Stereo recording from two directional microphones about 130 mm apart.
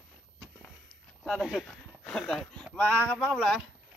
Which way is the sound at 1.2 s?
5° right (ahead or behind).